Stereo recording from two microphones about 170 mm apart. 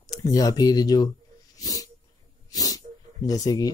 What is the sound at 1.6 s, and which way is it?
Dog, 20° left (ahead or behind).